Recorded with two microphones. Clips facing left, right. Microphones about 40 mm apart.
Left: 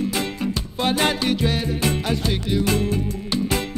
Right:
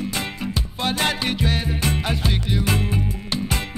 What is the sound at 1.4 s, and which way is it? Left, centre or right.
Music, centre.